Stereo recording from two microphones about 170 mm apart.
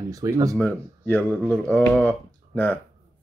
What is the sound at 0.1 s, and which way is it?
Speech, 20° right (ahead or behind).